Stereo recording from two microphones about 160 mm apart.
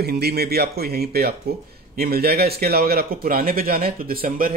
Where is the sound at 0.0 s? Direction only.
80° right.